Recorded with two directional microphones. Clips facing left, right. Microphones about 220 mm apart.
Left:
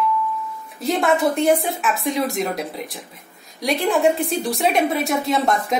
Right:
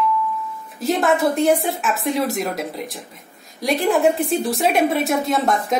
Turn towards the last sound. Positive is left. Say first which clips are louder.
# even
turn(degrees=0)  # may be behind; listen again after turning